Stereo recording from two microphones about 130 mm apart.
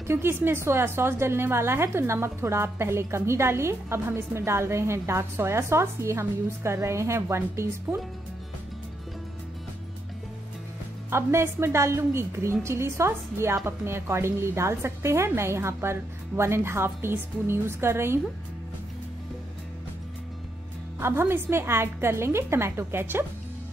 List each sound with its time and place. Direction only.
0.0 s a woman's voice: 20° right (ahead or behind)
11.1 s a woman's voice: 20° right (ahead or behind)
21.0 s a woman's voice: 20° right (ahead or behind)